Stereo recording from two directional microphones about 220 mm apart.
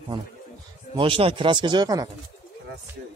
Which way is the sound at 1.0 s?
25° right (ahead or behind).